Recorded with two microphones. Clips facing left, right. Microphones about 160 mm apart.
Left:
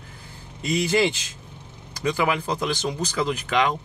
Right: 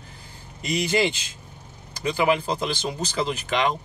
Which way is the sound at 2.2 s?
25° right (ahead or behind).